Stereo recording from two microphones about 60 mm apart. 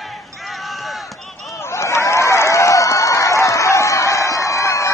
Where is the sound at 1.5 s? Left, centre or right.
Left.